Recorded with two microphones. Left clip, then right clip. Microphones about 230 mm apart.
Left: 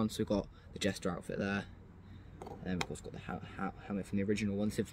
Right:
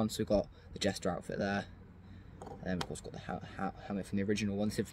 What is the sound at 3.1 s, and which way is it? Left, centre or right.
Speech, centre.